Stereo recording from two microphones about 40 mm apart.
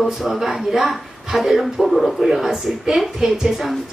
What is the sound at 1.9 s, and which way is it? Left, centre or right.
A woman's voice, centre.